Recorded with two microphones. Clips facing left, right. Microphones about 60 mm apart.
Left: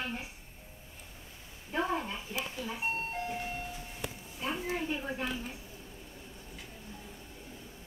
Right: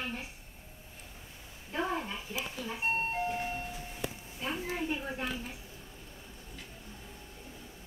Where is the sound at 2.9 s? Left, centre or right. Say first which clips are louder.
Right 3 dB; right; by 3.7 s centre.